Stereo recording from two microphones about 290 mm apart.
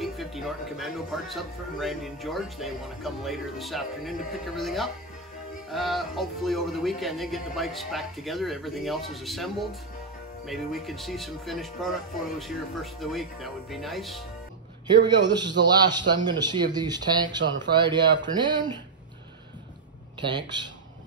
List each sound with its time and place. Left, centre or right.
0.0 s speech: centre
15.6 s speech: centre
20.2 s speech: centre